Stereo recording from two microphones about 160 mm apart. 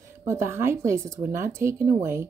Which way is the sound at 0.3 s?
15° right (ahead or behind).